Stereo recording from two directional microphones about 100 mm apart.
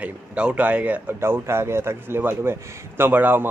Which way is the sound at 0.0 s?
10° right (ahead or behind).